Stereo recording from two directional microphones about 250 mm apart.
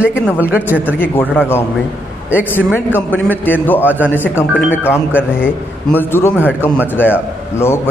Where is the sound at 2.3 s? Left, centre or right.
Centre.